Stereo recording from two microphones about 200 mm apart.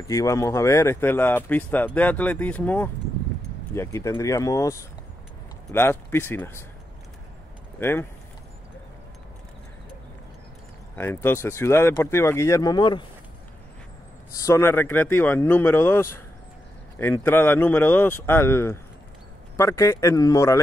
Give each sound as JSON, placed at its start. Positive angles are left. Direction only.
{"t": 0.1, "sound": "speech", "side_deg": 15}
{"t": 7.8, "sound": "speech", "side_deg": 10}
{"t": 11.0, "sound": "speech", "side_deg": 10}
{"t": 14.3, "sound": "speech", "side_deg": 15}